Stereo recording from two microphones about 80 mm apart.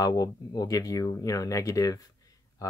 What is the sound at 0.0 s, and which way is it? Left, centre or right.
Speech, left.